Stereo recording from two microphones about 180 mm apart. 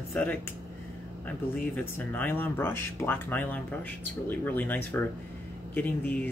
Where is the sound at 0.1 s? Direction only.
10° left (ahead or behind).